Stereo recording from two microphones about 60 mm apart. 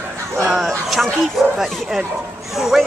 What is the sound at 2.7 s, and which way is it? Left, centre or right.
Speech, centre.